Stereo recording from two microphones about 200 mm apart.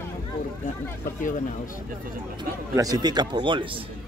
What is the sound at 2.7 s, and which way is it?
Speech, 20° right (ahead or behind).